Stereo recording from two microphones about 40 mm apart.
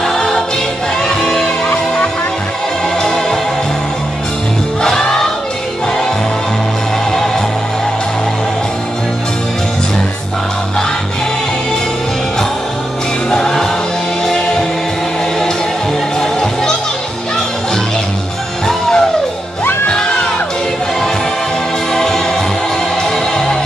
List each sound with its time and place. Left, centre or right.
1.2 s music: centre
4.8 s music: centre
13.3 s music: centre
16.2 s music: centre
18.7 s music: centre
21.9 s music: centre